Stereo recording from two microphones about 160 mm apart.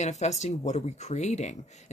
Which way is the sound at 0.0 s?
45° left (ahead or behind).